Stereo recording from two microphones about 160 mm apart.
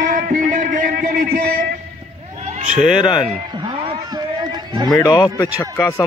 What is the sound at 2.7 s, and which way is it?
Speech, 5° right (ahead or behind).